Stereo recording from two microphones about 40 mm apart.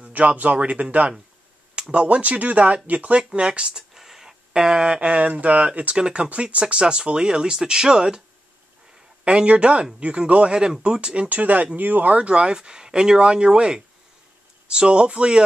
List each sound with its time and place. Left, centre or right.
0.1 s speech: right
3.2 s speech: centre
3.9 s a sound: centre; by 5.3 s right
5.3 s speech: right; by 8.2 s centre
9.2 s speech: right
11.2 s speech: right
12.1 s speech: right